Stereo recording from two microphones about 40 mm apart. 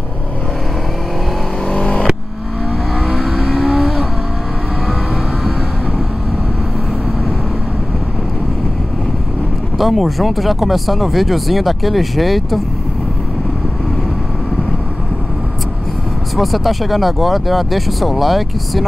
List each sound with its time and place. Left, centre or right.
1.7 s vehicle: centre
3.3 s vehicle: centre
9.8 s speech: centre
16.3 s speech: centre